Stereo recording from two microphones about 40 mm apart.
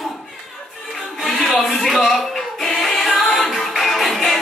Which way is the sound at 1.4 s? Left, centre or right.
Centre.